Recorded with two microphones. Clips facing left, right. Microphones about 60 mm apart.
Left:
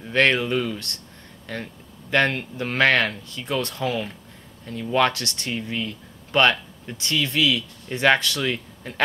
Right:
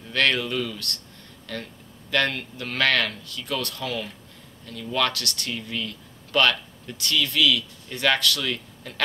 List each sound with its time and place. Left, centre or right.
0.1 s speech: left